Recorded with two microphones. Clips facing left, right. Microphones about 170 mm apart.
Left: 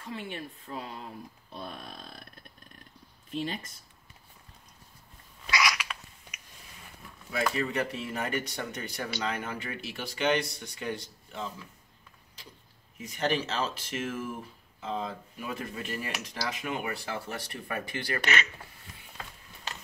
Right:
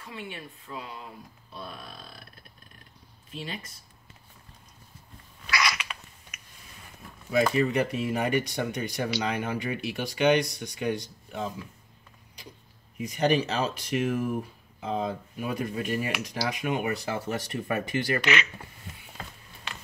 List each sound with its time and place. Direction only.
0.1 s speech: 40° left (ahead or behind)
5.6 s a sound: centre (ahead or behind)
7.2 s speech: 20° right (ahead or behind)
12.9 s speech: 15° right (ahead or behind)